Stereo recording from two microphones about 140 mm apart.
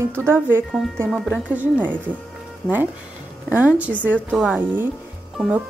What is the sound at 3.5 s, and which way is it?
Speech, 10° right (ahead or behind).